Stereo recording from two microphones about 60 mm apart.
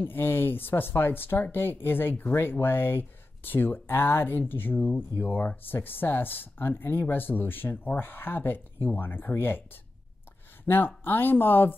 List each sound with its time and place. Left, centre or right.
0.0 s speech: left
10.6 s speech: left